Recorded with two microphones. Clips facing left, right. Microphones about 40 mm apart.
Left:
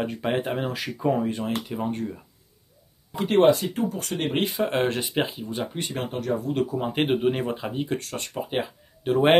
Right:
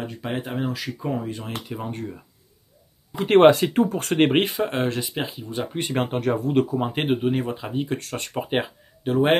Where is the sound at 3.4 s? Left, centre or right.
Right.